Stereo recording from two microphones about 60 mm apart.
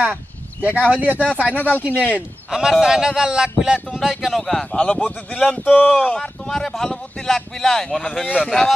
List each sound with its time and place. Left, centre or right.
0.0 s speech: right
1.3 s speech: left
2.5 s speech: centre
4.4 s speech: centre